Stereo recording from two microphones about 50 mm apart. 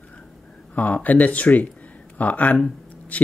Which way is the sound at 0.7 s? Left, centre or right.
Left.